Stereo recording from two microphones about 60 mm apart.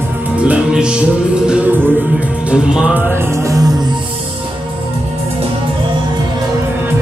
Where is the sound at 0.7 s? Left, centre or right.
Centre.